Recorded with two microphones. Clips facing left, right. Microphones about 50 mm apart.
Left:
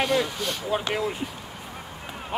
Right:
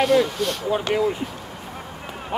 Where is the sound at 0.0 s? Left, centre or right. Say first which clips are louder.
Right 6 dB; centre.